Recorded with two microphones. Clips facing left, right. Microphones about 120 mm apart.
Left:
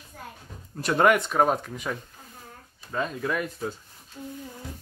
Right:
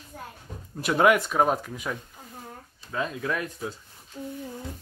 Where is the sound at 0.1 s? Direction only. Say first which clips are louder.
Right 1 dB; 25° right (ahead or behind).